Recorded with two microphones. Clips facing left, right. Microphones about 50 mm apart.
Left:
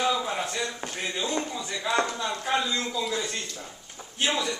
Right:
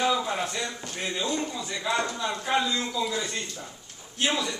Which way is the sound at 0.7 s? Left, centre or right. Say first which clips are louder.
Left 2 dB; left.